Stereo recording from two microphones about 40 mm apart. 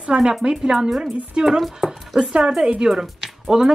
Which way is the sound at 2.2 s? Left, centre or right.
Right.